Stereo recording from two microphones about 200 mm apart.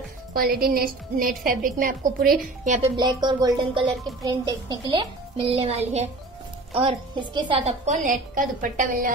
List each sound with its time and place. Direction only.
0.3 s a woman's voice: 50° right (ahead or behind)
3.0 s a woman's voice: 20° right (ahead or behind); by 9.1 s 40° right (ahead or behind)